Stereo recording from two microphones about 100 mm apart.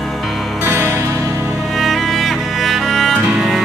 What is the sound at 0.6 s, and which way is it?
Music, 25° right (ahead or behind).